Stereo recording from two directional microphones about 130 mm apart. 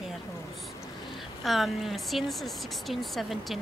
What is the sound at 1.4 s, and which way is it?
A woman's voice, centre (ahead or behind).